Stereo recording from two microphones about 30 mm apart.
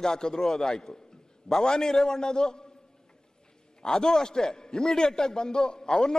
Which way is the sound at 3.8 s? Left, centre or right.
Centre.